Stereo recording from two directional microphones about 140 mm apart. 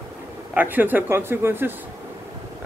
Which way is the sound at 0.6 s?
15° right (ahead or behind).